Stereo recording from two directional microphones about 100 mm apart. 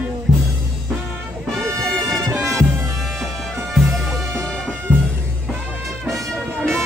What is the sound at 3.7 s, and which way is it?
Music, centre (ahead or behind).